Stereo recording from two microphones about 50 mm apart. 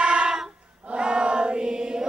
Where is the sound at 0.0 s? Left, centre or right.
Right.